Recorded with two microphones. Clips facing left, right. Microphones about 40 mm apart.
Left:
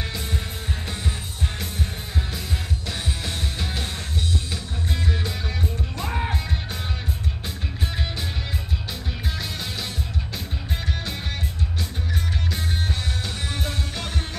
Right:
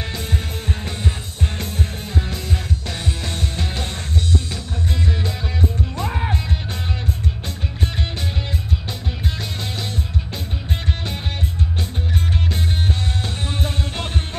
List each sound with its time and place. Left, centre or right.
2.9 s music: centre
5.6 s music: centre
13.5 s music: right